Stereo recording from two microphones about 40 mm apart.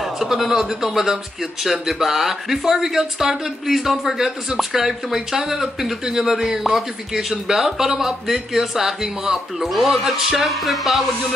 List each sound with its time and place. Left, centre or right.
0.0 s a man's voice: centre